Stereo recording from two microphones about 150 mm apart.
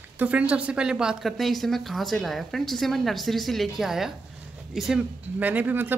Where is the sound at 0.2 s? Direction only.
10° right (ahead or behind).